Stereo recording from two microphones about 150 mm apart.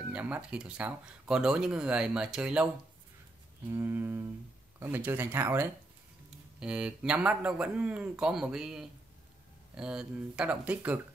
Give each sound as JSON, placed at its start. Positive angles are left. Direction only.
{"t": 0.1, "sound": "speech", "side_deg": -10}
{"t": 3.7, "sound": "speech", "side_deg": -15}